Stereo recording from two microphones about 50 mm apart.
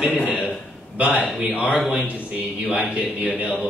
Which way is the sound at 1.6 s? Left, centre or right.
Right.